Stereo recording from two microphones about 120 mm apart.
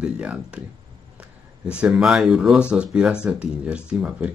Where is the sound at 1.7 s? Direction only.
10° right (ahead or behind).